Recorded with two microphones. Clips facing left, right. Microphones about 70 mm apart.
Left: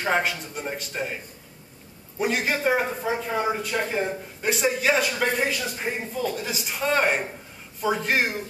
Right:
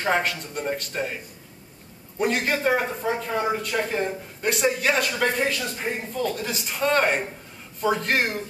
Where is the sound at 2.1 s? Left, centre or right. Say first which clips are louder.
Right 1 dB; centre.